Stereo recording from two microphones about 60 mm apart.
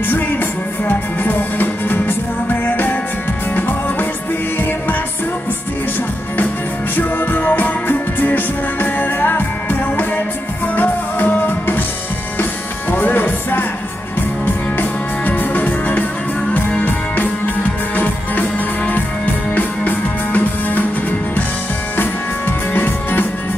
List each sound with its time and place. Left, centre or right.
0.1 s music: left
7.0 s music: left
12.9 s music: left
22.8 s music: left